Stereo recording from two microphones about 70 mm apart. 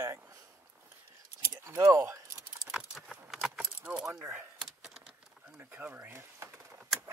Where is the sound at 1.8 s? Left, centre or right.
Right.